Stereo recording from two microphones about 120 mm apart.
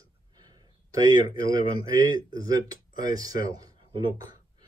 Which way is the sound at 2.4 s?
30° right (ahead or behind).